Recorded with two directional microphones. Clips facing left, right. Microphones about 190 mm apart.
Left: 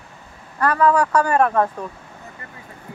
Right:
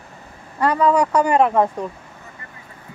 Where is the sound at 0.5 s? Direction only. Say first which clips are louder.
Right 1 dB; 15° right (ahead or behind).